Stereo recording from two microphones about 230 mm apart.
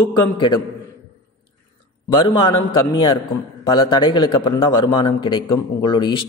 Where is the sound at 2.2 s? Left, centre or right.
Left.